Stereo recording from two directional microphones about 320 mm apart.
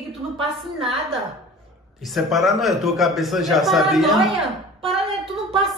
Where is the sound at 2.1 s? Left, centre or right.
Centre.